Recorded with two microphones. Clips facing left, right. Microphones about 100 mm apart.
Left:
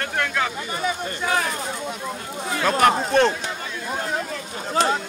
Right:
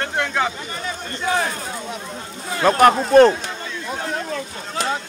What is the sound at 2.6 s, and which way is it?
Speech, 40° right (ahead or behind).